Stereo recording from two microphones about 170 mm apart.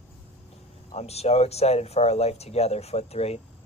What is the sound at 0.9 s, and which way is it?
Speech, 40° left (ahead or behind).